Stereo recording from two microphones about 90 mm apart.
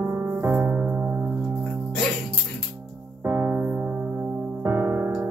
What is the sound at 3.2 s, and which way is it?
Music, 25° right (ahead or behind).